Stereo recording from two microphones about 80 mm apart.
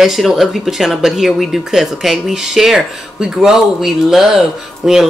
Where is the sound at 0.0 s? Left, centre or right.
Centre.